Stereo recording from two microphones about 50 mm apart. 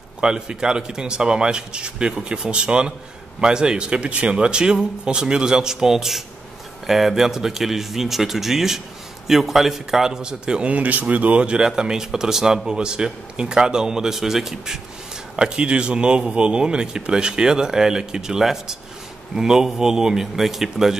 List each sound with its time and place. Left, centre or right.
0.2 s a man's voice: centre
10.7 s speech: right; by 14.8 s centre
15.3 s speech: centre